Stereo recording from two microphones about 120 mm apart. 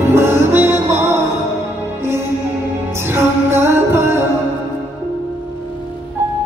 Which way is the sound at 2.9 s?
20° right (ahead or behind).